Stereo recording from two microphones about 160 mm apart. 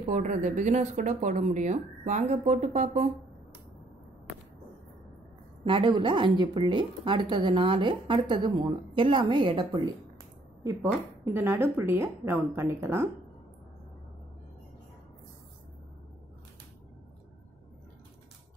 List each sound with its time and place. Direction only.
0.0 s speech: 50° right (ahead or behind)
5.7 s a woman's voice: 30° right (ahead or behind)
10.6 s a woman's voice: 20° right (ahead or behind)